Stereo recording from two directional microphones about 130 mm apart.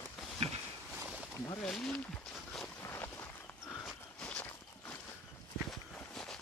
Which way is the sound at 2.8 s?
20° left (ahead or behind).